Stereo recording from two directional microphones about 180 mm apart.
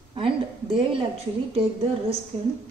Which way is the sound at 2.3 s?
35° right (ahead or behind).